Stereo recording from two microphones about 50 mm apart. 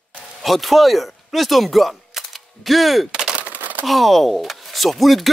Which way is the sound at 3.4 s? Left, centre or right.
Right.